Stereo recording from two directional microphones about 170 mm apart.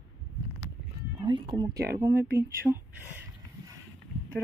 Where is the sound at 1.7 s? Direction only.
65° right (ahead or behind).